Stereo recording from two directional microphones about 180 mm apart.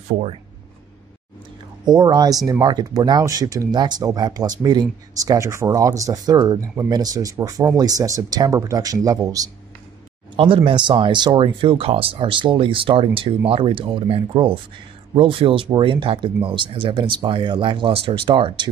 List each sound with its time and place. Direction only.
1.9 s speech: 20° right (ahead or behind)
10.3 s speech: 30° right (ahead or behind)